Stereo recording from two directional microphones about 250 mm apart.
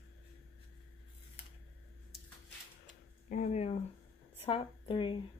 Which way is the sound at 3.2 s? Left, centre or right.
Left.